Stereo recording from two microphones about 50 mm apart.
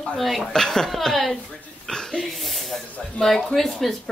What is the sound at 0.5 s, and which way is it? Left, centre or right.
Speech, centre.